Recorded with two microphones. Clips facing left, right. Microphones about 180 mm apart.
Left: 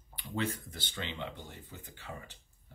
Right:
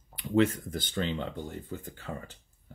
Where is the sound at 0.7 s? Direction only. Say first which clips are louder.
Right 10 dB; 45° right (ahead or behind).